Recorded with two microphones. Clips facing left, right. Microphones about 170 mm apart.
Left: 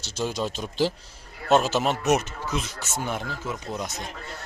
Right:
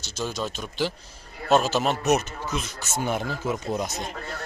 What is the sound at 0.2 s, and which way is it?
Speech, 15° left (ahead or behind).